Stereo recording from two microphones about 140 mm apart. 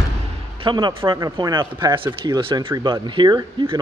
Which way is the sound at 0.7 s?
35° right (ahead or behind).